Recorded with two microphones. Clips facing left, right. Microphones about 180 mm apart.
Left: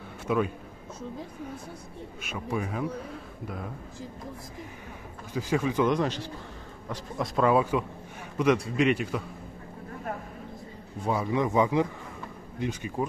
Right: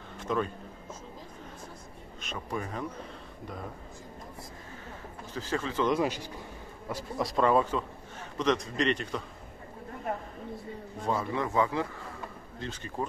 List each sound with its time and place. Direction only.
0.3 s speech: 10° left (ahead or behind)
2.2 s speech: 5° left (ahead or behind)
5.3 s speech: 10° left (ahead or behind)
5.9 s a man's voice: 10° right (ahead or behind); by 9.2 s 5° left (ahead or behind)
11.1 s speech: 10° left (ahead or behind)